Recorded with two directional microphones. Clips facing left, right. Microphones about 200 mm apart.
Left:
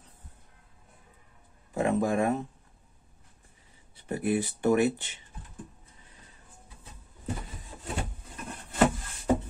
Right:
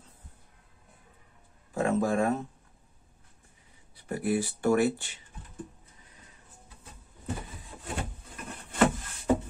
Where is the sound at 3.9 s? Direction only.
20° left (ahead or behind).